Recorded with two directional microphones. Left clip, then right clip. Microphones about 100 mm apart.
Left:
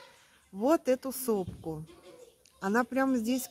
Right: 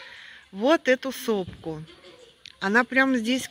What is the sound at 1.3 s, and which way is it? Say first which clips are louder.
Speech: right 4 dB; 45° right (ahead or behind).